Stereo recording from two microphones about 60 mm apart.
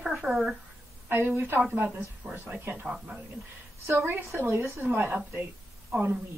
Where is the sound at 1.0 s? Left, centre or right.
Right.